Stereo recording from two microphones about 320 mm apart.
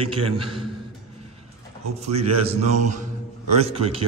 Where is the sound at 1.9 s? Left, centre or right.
Centre.